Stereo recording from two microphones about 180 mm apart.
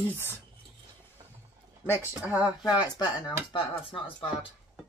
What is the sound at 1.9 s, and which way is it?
Speech, 15° left (ahead or behind).